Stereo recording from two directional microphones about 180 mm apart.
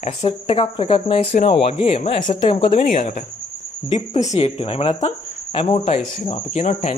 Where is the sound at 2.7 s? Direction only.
45° left (ahead or behind).